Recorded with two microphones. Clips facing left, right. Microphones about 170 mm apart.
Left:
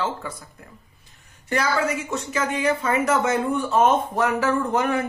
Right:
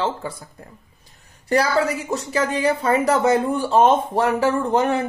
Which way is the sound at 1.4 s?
35° right (ahead or behind).